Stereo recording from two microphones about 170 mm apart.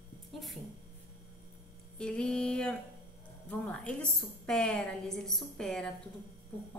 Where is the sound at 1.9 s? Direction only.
5° left (ahead or behind).